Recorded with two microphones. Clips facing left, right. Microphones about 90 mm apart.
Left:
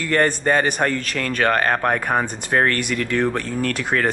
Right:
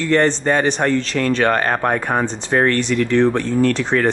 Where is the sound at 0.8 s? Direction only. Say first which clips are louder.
Right 5 dB; 20° right (ahead or behind).